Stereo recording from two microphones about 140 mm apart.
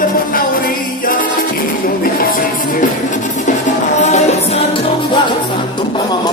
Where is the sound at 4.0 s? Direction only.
55° left (ahead or behind).